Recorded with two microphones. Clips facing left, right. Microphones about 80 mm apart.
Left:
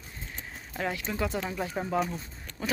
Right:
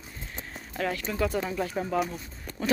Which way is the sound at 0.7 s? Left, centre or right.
Centre.